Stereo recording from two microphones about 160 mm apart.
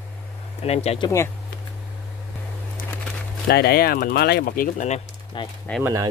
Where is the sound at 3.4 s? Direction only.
85° left; by 5.0 s 50° left (ahead or behind).